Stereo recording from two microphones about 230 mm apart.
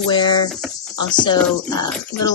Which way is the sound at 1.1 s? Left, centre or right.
Centre.